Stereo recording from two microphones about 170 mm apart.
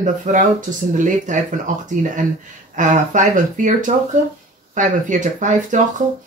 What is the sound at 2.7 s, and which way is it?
Speech, 50° right (ahead or behind).